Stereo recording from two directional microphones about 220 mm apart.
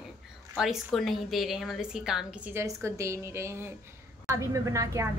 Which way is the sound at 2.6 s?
15° right (ahead or behind).